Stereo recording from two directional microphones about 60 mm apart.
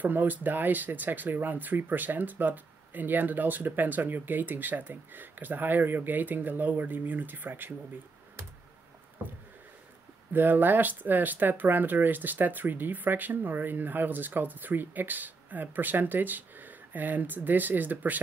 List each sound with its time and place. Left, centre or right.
0.0 s speech: right
10.3 s speech: right